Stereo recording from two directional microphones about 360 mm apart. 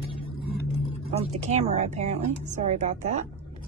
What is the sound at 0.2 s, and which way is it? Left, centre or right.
Vehicle, centre.